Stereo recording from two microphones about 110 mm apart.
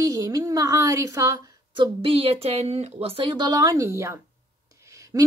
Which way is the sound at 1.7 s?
50° right (ahead or behind).